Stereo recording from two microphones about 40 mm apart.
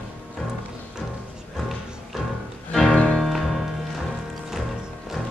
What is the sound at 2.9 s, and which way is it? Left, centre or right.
Music, left.